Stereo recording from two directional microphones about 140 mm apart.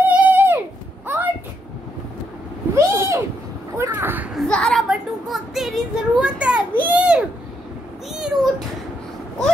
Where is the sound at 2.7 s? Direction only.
20° right (ahead or behind).